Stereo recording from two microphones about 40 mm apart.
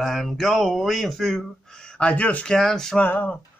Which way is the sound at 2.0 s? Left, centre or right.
Left.